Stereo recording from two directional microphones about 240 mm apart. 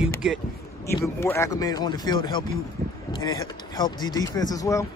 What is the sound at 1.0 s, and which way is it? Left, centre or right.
Speech, centre.